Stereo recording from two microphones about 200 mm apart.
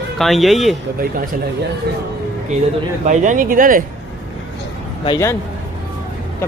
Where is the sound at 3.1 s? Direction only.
40° right (ahead or behind).